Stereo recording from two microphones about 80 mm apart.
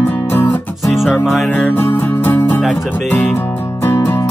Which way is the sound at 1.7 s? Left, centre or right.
Left.